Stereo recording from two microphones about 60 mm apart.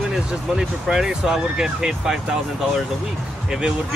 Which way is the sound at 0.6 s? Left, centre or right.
Centre.